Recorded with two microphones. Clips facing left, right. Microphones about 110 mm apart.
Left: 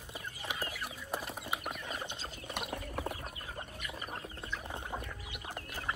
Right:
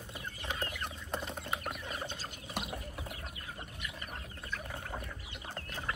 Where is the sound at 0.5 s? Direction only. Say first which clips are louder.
Right 1 dB; 5° left (ahead or behind).